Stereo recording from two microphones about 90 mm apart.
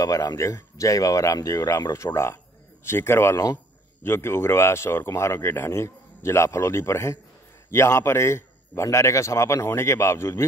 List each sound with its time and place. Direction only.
0.0 s a man's voice: 40° left (ahead or behind)